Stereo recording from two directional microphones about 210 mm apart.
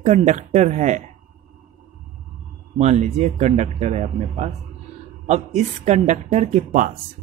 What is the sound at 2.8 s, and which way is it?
Speech, 35° right (ahead or behind).